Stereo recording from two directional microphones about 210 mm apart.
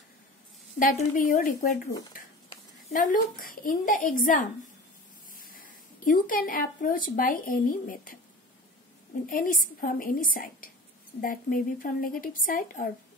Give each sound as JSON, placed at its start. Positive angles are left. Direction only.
{"t": 0.7, "sound": "a woman's voice", "side_deg": 40}
{"t": 2.9, "sound": "a woman's voice", "side_deg": 40}
{"t": 9.2, "sound": "a woman's voice", "side_deg": 40}